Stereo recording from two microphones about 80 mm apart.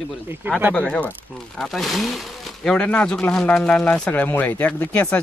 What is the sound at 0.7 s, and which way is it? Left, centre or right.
Speech, centre.